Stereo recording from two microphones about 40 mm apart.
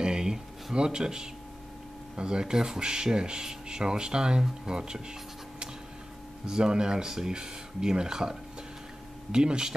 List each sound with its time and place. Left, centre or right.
0.0 s a sound: centre
0.7 s speech: centre
6.4 s speech: centre